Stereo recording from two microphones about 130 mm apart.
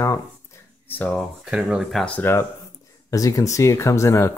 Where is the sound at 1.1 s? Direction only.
Centre (ahead or behind).